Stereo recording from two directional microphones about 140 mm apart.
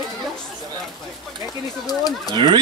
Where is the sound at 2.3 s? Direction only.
35° right (ahead or behind).